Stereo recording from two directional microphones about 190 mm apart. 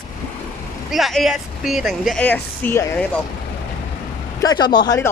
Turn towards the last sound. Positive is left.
turn(degrees=20)  # may be behind; listen again after turning